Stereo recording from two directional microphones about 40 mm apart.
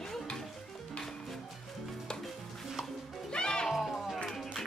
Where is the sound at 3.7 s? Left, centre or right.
Centre.